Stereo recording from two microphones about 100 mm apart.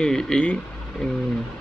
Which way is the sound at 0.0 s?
5° left (ahead or behind).